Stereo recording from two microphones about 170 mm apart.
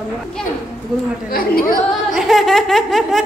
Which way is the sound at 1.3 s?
60° left (ahead or behind).